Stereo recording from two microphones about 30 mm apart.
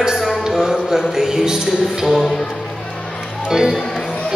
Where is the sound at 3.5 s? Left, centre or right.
Centre.